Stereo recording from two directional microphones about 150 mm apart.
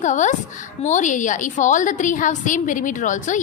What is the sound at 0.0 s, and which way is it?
A woman's voice, 55° left (ahead or behind).